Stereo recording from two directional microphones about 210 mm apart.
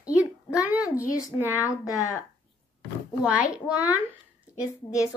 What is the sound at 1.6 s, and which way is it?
Speech, 15° left (ahead or behind).